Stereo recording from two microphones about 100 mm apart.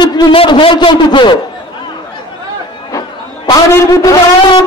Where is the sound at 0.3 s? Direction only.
60° left (ahead or behind).